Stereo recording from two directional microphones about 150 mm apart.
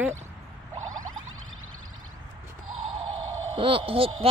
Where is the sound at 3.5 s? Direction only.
35° right (ahead or behind).